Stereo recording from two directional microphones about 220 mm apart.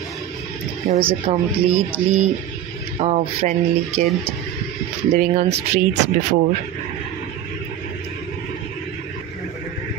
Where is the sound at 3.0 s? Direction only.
30° right (ahead or behind).